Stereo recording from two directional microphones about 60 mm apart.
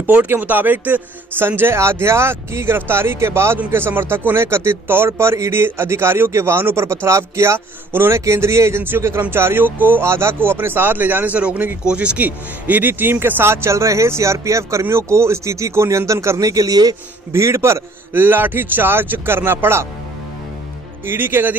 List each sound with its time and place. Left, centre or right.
0.0 s speech: right; by 12.2 s centre
12.2 s speech: right
13.7 s speech: right
17.3 s speech: right
18.2 s speech: right
21.0 s speech: right